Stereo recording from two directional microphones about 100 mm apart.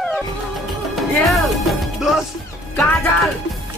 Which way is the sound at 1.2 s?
Centre (ahead or behind).